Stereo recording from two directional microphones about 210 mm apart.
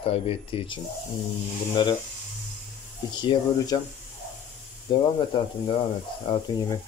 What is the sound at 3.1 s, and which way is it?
Speech, 20° left (ahead or behind).